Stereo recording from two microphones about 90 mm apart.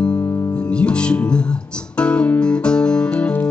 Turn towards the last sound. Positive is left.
turn(degrees=15)  # may be behind; listen again after turning